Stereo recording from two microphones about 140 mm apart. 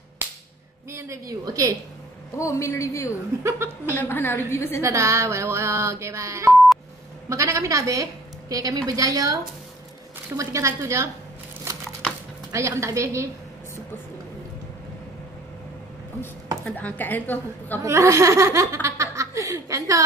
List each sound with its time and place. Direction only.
0.9 s a woman's voice: 20° right (ahead or behind)
2.3 s a man's voice: 20° left (ahead or behind)
3.4 s a woman's voice: 20° right (ahead or behind)
4.0 s a woman's voice: 15° left (ahead or behind)
4.8 s a woman's voice: 20° right (ahead or behind)
12.5 s a woman's voice: 20° right (ahead or behind)
16.6 s a woman's voice: 10° left (ahead or behind)
17.8 s laughter: 20° right (ahead or behind)